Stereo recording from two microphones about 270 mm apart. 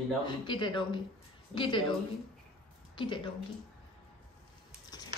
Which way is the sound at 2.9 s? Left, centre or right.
Centre.